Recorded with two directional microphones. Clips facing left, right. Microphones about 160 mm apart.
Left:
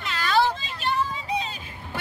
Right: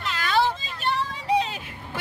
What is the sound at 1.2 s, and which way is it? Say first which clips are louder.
Vehicle: right 6 dB; 70° right (ahead or behind).